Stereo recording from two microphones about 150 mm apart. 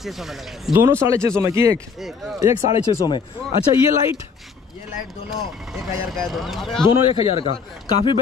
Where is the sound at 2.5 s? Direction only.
40° left (ahead or behind).